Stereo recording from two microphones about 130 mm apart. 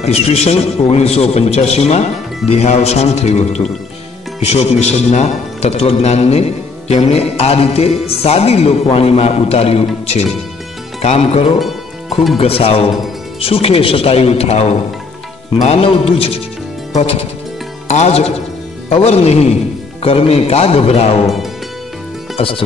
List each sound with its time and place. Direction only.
0.0 s a man's voice: 50° left (ahead or behind)
17.8 s speech: 55° left (ahead or behind)
22.3 s music: 45° left (ahead or behind)